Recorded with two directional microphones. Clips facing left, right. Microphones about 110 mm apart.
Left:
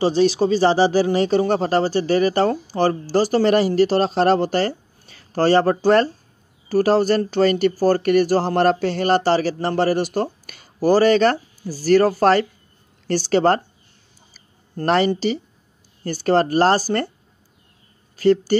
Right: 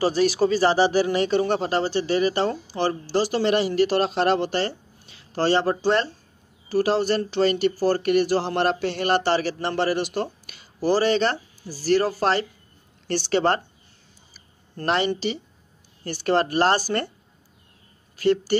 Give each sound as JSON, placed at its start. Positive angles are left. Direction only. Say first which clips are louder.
{"t": 0.0, "sound": "speech", "louder": "left 3 dB", "side_deg": 25}
{"t": 14.8, "sound": "speech", "louder": "left 5 dB", "side_deg": 40}
{"t": 18.1, "sound": "a sound", "louder": "left 5 dB", "side_deg": 35}